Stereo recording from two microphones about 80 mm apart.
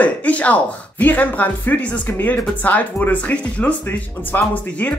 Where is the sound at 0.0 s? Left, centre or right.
Centre.